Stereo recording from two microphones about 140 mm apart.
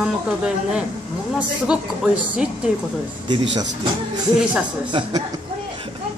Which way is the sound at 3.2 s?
30° right (ahead or behind).